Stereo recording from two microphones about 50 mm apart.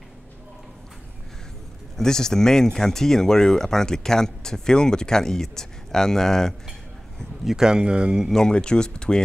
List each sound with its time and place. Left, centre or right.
2.0 s speech: centre
7.4 s speech: centre
8.3 s speech: centre